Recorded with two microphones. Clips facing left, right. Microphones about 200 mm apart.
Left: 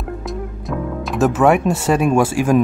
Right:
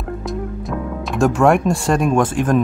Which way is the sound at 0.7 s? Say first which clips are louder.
Left 5 dB; 5° left (ahead or behind).